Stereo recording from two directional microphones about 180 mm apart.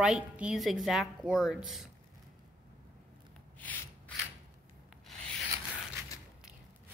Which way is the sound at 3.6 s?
10° left (ahead or behind).